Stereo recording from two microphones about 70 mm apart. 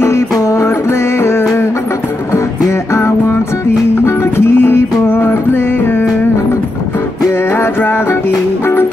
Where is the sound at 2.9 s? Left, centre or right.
Left.